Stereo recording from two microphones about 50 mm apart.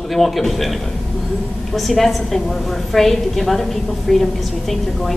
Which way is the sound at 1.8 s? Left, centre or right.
Centre.